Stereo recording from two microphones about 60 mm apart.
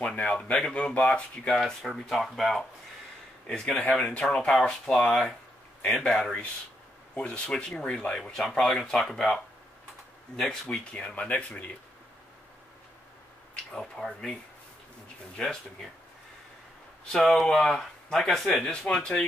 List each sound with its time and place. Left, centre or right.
0.0 s speech: left
1.6 s speech: centre
5.9 s speech: centre
8.3 s speech: centre; by 11.7 s left
13.7 s speech: centre
15.4 s speech: centre
17.1 s speech: centre
18.6 s speech: centre